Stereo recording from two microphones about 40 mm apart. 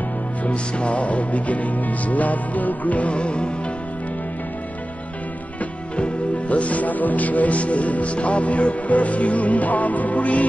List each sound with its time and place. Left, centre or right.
0.5 s speech: left
6.5 s speech: left